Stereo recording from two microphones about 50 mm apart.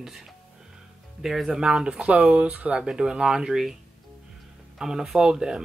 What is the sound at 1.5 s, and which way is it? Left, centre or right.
Speech, centre.